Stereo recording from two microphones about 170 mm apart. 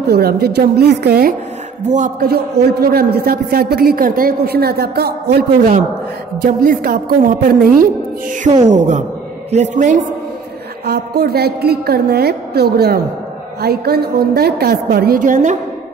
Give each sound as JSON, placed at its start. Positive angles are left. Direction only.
{"t": 0.0, "sound": "a woman's voice", "side_deg": -65}
{"t": 1.9, "sound": "a man's voice", "side_deg": -45}
{"t": 2.2, "sound": "a woman's voice", "side_deg": -70}
{"t": 6.4, "sound": "a woman's voice", "side_deg": -55}
{"t": 8.7, "sound": "a man's voice", "side_deg": -45}
{"t": 10.9, "sound": "a woman's voice", "side_deg": -70}
{"t": 15.0, "sound": "a man's voice", "side_deg": -55}